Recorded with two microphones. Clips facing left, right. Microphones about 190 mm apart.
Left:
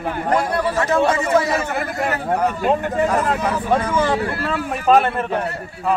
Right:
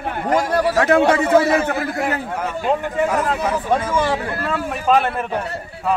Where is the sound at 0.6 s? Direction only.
75° right (ahead or behind).